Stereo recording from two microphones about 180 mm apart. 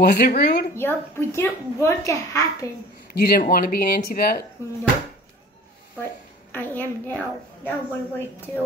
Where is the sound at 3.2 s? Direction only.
55° left (ahead or behind).